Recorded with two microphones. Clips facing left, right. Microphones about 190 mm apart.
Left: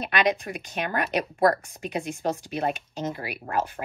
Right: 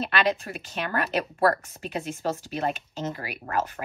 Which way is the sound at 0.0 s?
15° left (ahead or behind).